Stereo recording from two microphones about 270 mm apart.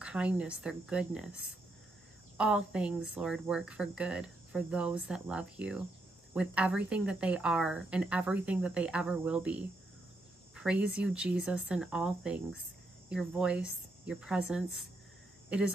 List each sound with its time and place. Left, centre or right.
0.0 s speech: centre